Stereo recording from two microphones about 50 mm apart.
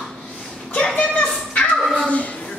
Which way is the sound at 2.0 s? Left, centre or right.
Left.